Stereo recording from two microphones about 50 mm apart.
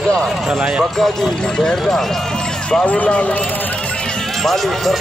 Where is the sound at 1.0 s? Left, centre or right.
Centre.